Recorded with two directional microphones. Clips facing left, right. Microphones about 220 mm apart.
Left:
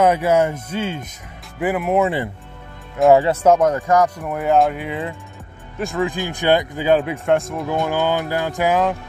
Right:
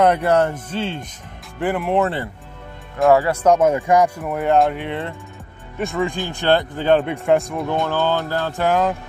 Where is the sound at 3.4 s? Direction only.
Centre (ahead or behind).